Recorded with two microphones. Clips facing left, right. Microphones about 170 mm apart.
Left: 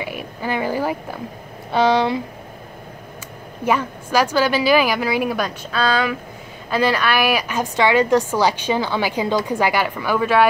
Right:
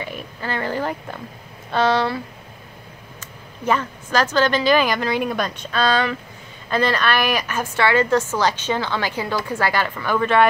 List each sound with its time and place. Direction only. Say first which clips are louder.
0.0 s a woman's voice: left 3 dB; 10° left (ahead or behind)
3.6 s a woman's voice: left 1 dB; 10° left (ahead or behind)